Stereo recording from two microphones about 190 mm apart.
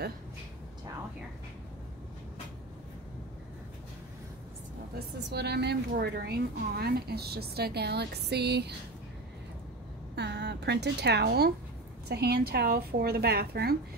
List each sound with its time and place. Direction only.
4.9 s speech: 60° right (ahead or behind)
10.1 s a woman's voice: 60° right (ahead or behind)